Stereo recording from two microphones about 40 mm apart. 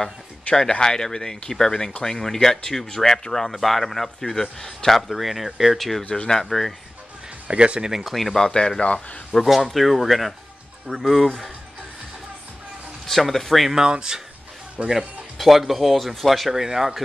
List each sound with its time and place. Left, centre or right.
0.7 s speech: centre
6.0 s speech: left
7.4 s speech: right
7.8 s speech: centre
8.5 s speech: centre
8.8 s speech: left
9.4 s speech: centre
13.0 s speech: centre
13.7 s speech: centre
14.8 s speech: right
15.3 s speech: centre